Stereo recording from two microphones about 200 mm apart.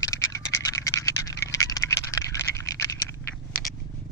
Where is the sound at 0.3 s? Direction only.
15° left (ahead or behind).